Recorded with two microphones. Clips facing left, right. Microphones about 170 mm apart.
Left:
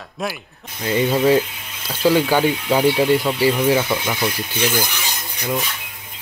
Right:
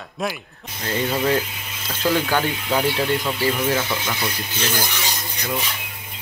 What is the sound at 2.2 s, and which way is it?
Speech, 15° left (ahead or behind).